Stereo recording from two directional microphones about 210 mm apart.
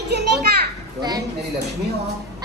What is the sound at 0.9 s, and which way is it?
Speech, 20° right (ahead or behind).